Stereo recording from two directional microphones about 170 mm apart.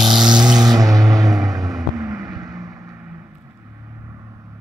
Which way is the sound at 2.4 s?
20° right (ahead or behind).